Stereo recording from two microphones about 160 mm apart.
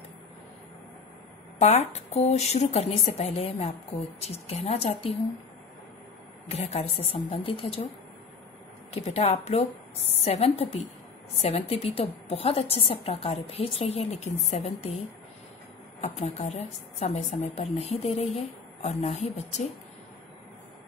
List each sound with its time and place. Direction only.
1.6 s a woman's voice: 45° left (ahead or behind)
6.5 s a woman's voice: 40° left (ahead or behind)
8.9 s a woman's voice: 40° left (ahead or behind)
16.0 s a woman's voice: 45° left (ahead or behind)